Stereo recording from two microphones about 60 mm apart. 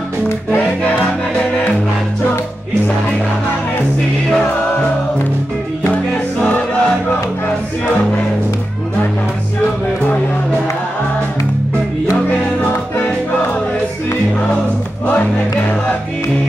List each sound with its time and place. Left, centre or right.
6.4 s choir: left